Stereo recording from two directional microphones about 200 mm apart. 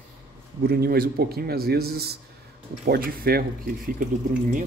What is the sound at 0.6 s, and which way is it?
A man's voice, 50° right (ahead or behind).